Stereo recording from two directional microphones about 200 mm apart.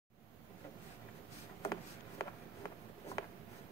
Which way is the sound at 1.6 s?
15° left (ahead or behind).